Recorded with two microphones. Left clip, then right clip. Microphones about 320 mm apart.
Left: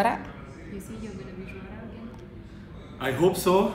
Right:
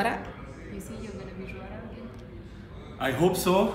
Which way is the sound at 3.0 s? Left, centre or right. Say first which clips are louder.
Left 1 dB; centre.